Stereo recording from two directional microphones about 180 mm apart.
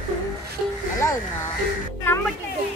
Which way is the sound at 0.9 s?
20° left (ahead or behind).